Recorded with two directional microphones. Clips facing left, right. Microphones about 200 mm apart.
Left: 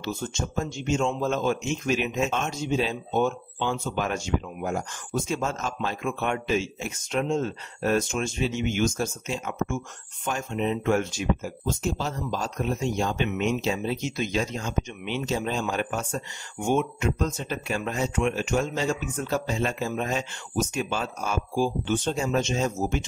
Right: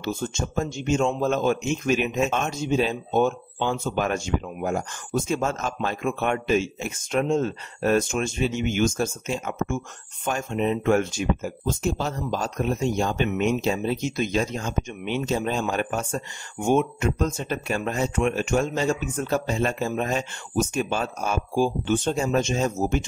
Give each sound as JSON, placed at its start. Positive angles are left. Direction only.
{"t": 0.0, "sound": "speech", "side_deg": -50}